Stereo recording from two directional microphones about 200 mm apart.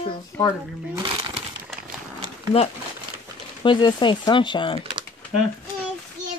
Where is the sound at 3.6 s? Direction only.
25° left (ahead or behind).